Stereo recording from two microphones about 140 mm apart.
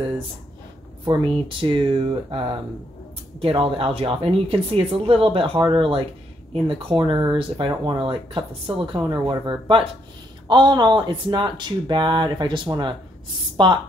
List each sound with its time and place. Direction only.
1.0 s speech: 35° right (ahead or behind)